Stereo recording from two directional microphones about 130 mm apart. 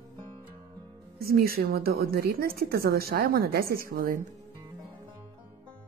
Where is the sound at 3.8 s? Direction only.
90° right.